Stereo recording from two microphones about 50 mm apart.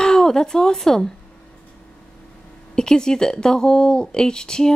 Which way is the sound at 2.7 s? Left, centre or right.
Centre.